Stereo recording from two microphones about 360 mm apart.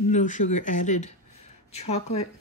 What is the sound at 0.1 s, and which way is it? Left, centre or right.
Speech, left.